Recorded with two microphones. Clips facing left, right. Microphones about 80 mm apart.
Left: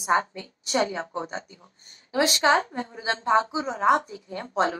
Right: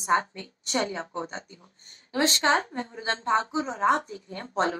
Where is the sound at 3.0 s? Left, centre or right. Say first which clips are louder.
Left 3 dB; right.